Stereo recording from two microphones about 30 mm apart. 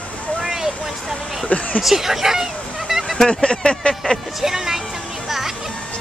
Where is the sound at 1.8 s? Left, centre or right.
Centre.